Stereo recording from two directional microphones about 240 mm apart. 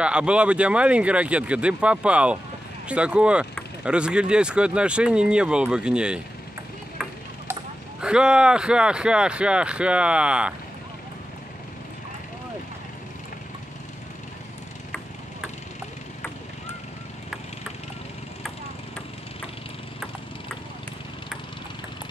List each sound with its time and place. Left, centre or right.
0.0 s speech: centre
8.0 s speech: centre